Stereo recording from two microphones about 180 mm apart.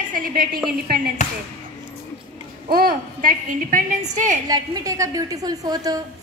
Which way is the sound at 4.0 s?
40° right (ahead or behind).